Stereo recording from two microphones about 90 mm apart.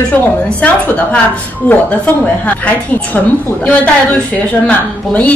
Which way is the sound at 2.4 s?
15° left (ahead or behind).